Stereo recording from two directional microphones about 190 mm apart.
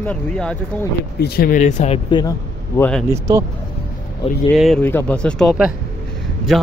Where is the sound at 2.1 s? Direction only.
20° left (ahead or behind).